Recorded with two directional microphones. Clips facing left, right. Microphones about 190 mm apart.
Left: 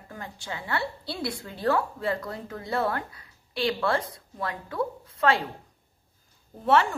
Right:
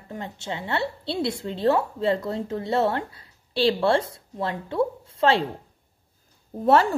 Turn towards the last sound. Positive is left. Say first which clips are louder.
# right 4 dB
turn(degrees=-35)  # may be behind; listen again after turning